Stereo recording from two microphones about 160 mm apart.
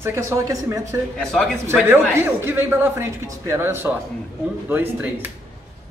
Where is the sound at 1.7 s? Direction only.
15° right (ahead or behind).